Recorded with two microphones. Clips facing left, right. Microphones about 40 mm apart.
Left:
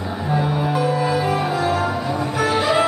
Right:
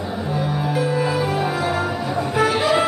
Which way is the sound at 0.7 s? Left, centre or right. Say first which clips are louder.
Even; centre.